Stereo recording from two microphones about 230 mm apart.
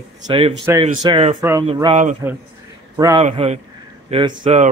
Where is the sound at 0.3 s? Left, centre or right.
Right.